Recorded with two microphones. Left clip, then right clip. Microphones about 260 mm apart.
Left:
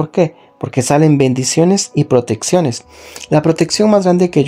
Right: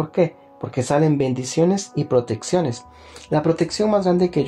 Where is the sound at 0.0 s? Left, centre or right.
Left.